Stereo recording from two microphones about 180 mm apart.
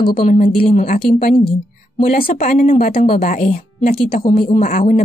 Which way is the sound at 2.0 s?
50° left (ahead or behind).